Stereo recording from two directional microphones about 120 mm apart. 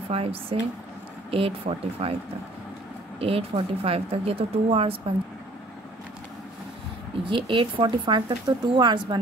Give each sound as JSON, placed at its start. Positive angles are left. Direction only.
{"t": 0.1, "sound": "speech", "side_deg": -50}
{"t": 3.2, "sound": "speech", "side_deg": -55}
{"t": 7.2, "sound": "speech", "side_deg": -45}